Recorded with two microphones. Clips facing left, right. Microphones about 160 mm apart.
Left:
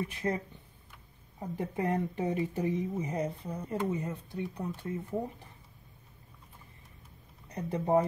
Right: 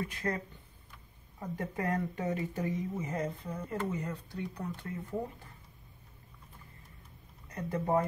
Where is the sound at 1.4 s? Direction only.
20° left (ahead or behind).